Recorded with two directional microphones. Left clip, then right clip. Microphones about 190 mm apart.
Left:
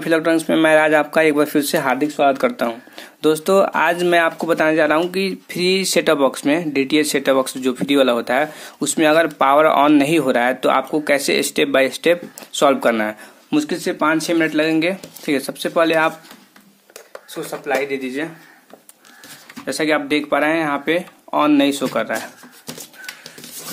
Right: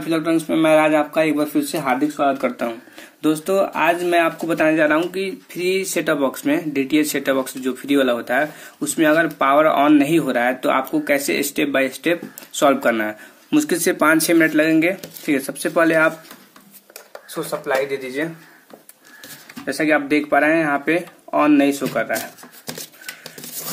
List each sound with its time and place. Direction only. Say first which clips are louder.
0.0 s speech: left 3 dB; 45° left (ahead or behind)
13.5 s speech: right 1 dB; 15° left (ahead or behind)
13.7 s speech: right 4 dB; centre (ahead or behind)
14.3 s speech: right 2 dB; 15° left (ahead or behind)
17.1 s speech: right 2 dB; 15° left (ahead or behind)
19.6 s speech: even; 20° left (ahead or behind)